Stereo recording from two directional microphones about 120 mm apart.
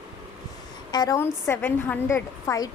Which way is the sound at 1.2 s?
20° left (ahead or behind).